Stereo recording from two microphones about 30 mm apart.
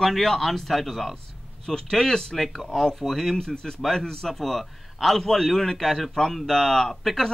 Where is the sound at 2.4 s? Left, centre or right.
Centre.